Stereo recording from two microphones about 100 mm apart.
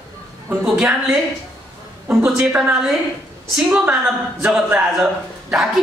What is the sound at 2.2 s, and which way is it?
A woman's voice, 15° right (ahead or behind).